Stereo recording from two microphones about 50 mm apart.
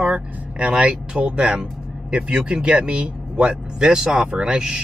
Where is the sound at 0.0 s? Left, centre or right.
Right.